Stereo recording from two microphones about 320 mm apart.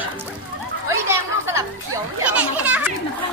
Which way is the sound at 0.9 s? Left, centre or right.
Centre.